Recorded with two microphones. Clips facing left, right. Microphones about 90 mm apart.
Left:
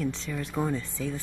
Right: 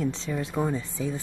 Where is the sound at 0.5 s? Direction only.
10° right (ahead or behind).